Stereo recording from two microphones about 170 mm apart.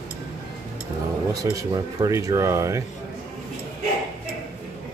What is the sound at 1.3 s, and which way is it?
Speech, 20° right (ahead or behind).